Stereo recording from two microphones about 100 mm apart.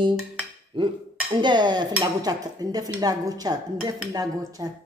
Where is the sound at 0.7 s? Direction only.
55° right (ahead or behind).